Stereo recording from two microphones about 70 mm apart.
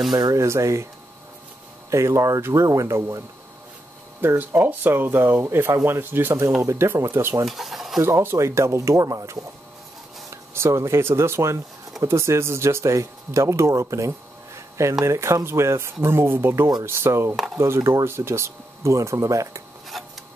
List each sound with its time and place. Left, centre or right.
0.4 s speech: right
1.9 s speech: right
4.4 s speech: right
7.4 s stir: centre
8.0 s speech: right
10.3 s speech: right
19.9 s a sound: centre